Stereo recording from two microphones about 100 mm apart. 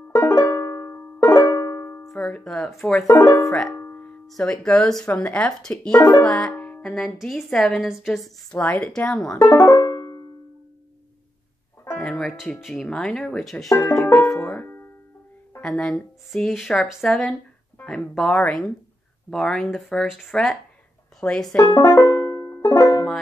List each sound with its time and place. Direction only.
0.1 s music: 25° left (ahead or behind)
1.4 s music: 40° left (ahead or behind)
2.1 s speech: 10° left (ahead or behind)
3.1 s speech: 30° left (ahead or behind)
3.7 s music: 25° left (ahead or behind)
4.3 s a woman's voice: 10° left (ahead or behind)
8.5 s speech: 15° left (ahead or behind)
9.5 s banjo: 35° left (ahead or behind)
12.0 s music: 5° left (ahead or behind)
12.6 s a woman's voice: 5° left (ahead or behind)
13.7 s speech: 25° left (ahead or behind)
14.4 s music: 20° left (ahead or behind)
15.6 s a woman's voice: 5° left (ahead or behind)
21.7 s banjo: 30° left (ahead or behind)